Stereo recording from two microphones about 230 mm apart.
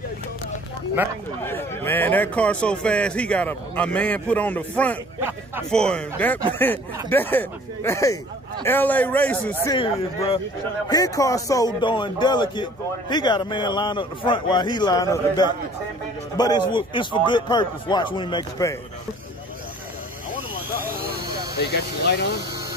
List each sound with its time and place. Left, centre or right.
1.4 s a man's voice: centre
9.8 s a man's voice: left